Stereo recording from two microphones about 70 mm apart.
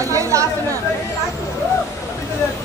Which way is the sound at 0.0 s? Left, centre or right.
Right.